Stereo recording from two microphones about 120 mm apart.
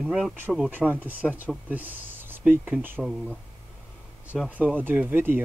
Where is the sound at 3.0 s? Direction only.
5° right (ahead or behind).